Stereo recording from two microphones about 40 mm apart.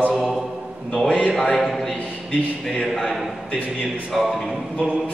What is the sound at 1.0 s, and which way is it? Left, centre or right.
Speech, left.